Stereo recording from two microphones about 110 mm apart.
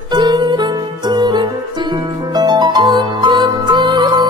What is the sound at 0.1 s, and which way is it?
Music, 40° right (ahead or behind).